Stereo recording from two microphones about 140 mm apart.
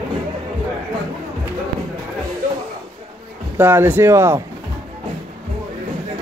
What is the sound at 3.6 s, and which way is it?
Speech, 15° right (ahead or behind).